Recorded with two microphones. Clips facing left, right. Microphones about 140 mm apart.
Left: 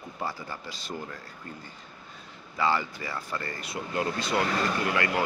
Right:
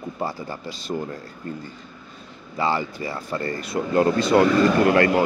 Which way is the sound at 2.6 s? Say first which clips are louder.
Right 4 dB; 25° right (ahead or behind).